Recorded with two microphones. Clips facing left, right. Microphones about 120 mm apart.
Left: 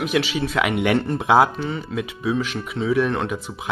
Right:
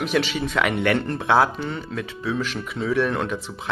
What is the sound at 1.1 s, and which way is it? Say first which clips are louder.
Speech: left 4 dB; 15° left (ahead or behind).